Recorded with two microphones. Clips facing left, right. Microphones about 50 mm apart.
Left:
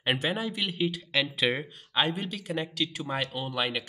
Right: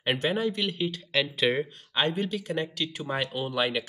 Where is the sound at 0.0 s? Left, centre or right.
Centre.